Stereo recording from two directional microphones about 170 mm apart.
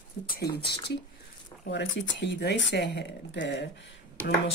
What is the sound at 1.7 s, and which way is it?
Speech, 90° left.